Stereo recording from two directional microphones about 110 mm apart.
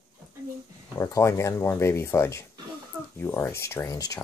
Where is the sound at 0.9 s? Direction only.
25° left (ahead or behind).